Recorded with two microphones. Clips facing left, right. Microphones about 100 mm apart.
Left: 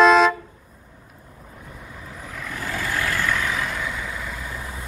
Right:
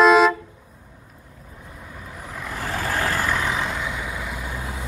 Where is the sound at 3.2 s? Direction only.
25° right (ahead or behind).